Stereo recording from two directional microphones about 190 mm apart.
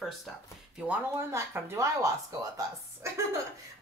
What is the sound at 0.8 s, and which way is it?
A woman's voice, 15° right (ahead or behind).